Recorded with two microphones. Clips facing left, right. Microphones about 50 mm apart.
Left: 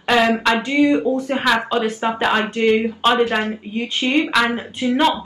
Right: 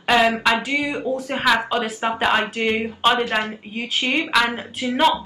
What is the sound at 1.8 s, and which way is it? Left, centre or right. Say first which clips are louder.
Speech: left 3 dB; centre.